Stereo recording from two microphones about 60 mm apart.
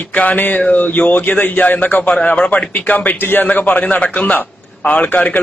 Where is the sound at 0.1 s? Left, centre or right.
Left.